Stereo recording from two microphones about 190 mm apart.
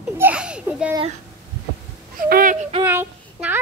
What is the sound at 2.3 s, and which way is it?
Speech, 45° right (ahead or behind).